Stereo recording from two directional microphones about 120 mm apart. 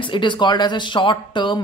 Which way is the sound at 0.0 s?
40° left (ahead or behind).